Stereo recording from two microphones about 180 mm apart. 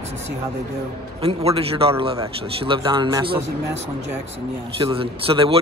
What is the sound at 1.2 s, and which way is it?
Speech, 35° right (ahead or behind).